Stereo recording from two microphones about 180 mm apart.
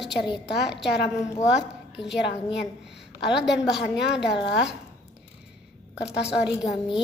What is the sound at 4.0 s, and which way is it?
Speech, 70° left (ahead or behind).